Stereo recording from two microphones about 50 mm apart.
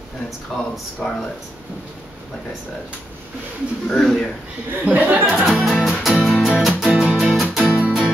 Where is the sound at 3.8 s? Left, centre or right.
Centre.